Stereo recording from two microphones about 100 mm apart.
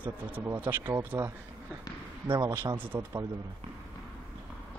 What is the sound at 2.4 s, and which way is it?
Speech, 30° right (ahead or behind).